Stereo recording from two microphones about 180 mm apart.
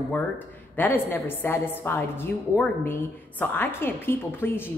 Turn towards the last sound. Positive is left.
turn(degrees=10)  # may be behind; listen again after turning